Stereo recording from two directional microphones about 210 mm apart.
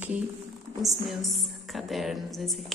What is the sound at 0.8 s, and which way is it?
A woman's voice, centre (ahead or behind).